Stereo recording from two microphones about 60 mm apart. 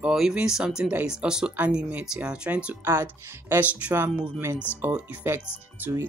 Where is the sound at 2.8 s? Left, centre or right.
Right.